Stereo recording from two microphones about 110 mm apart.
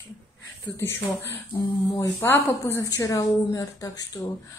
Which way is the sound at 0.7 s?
25° left (ahead or behind).